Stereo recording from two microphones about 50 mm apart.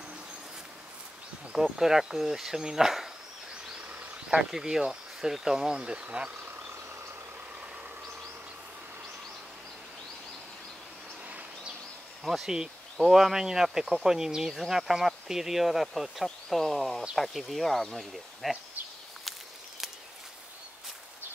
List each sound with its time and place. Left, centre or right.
1.5 s speech: centre
4.3 s speech: centre; by 6.5 s right
11.2 s a sound: right
12.2 s speech: centre